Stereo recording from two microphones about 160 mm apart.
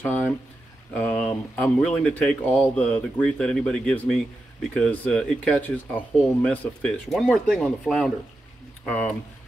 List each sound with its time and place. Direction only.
0.0 s speech: 10° left (ahead or behind)